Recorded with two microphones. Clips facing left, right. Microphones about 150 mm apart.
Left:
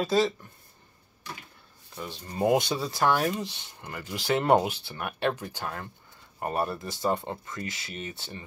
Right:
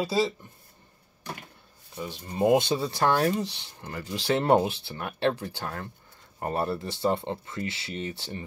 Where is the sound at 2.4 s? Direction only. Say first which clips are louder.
Right 2 dB; 25° right (ahead or behind).